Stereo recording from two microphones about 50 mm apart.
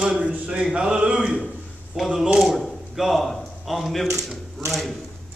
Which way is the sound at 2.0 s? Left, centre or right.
Centre.